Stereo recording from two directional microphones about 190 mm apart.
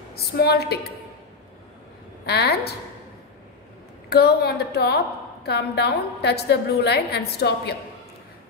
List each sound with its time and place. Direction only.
0.1 s a woman's voice: 55° left (ahead or behind)
2.2 s a woman's voice: 60° left (ahead or behind)
4.1 s a woman's voice: 55° left (ahead or behind)